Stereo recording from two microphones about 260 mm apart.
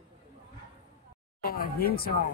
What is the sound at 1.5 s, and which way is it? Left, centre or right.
Speech, left.